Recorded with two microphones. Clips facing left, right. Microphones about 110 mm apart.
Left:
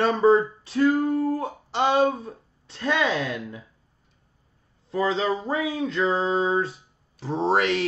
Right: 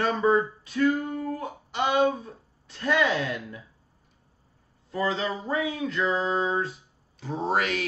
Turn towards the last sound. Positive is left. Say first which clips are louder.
# left 4 dB
turn(degrees=25)  # may be behind; listen again after turning